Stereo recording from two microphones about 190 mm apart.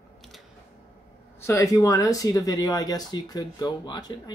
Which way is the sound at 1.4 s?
15° left (ahead or behind).